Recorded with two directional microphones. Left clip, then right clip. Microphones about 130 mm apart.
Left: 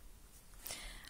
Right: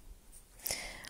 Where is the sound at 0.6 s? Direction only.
45° right (ahead or behind).